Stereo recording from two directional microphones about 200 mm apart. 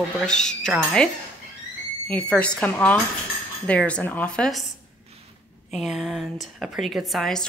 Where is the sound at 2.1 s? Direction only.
5° left (ahead or behind).